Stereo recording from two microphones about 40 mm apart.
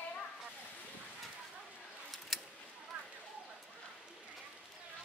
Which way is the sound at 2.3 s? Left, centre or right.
Centre.